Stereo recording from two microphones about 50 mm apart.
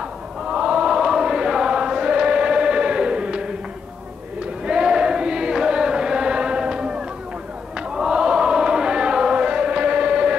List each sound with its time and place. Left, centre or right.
0.5 s chant: centre
4.6 s chant: centre